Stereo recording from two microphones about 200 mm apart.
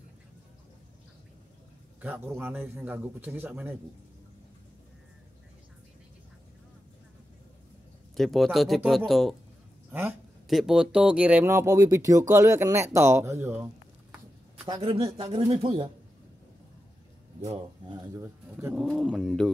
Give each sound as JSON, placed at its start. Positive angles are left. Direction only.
{"t": 2.0, "sound": "speech", "side_deg": -10}
{"t": 8.2, "sound": "speech", "side_deg": 0}
{"t": 9.8, "sound": "speech", "side_deg": -10}
{"t": 14.7, "sound": "speech", "side_deg": -25}
{"t": 17.5, "sound": "speech", "side_deg": -25}